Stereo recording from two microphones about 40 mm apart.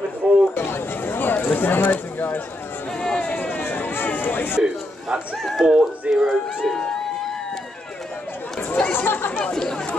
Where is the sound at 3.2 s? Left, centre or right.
Left.